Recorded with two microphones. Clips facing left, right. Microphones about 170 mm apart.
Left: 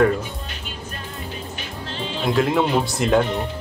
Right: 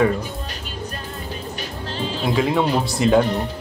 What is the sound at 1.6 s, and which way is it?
Music, 40° right (ahead or behind).